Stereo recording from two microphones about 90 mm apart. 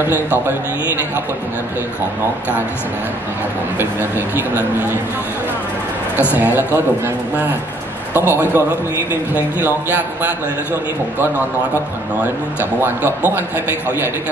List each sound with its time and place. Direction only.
0.0 s a man's voice: 20° right (ahead or behind)
3.7 s a man's voice: 20° right (ahead or behind)
6.3 s a man's voice: 20° right (ahead or behind)
8.1 s a man's voice: 25° right (ahead or behind)
12.2 s a man's voice: 20° right (ahead or behind)